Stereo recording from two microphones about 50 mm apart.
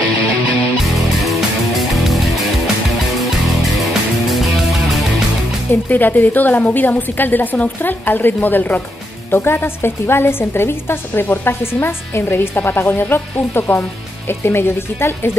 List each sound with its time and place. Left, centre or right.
0.9 s music: centre
5.9 s a woman's voice: left